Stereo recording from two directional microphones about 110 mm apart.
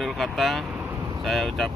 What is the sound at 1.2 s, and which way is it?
Speech, centre (ahead or behind).